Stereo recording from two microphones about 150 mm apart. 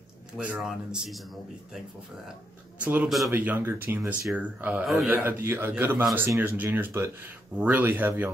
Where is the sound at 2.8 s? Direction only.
10° right (ahead or behind).